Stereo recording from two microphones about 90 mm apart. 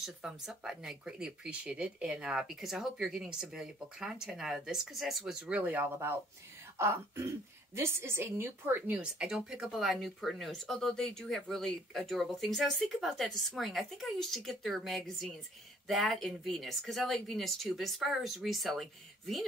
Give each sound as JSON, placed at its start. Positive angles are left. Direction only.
{"t": 0.0, "sound": "speech", "side_deg": -5}
{"t": 5.4, "sound": "a woman's voice", "side_deg": -20}